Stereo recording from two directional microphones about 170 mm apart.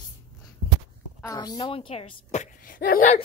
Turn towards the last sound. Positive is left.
turn(degrees=55)  # may be behind; listen again after turning